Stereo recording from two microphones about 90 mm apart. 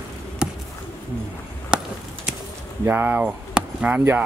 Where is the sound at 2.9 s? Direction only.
20° right (ahead or behind).